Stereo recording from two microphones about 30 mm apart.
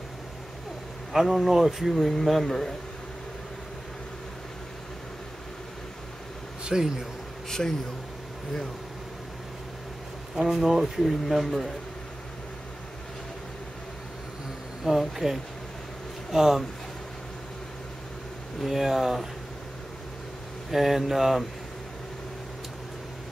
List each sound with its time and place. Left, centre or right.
1.2 s speech: centre
2.0 s speech: centre
6.6 s speech: right
7.4 s speech: centre
10.5 s speech: centre
14.9 s speech: centre
16.3 s speech: centre
18.7 s speech: centre
20.7 s speech: centre